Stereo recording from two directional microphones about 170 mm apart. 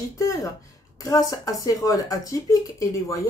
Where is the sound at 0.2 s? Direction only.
20° left (ahead or behind).